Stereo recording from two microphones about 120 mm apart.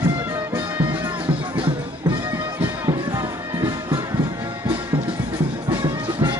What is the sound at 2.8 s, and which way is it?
Music, 30° right (ahead or behind).